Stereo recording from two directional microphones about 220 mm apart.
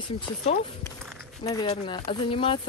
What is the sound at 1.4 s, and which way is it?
Speech, 20° left (ahead or behind).